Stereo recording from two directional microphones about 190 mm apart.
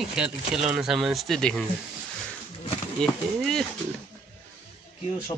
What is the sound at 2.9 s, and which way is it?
Speech, centre (ahead or behind).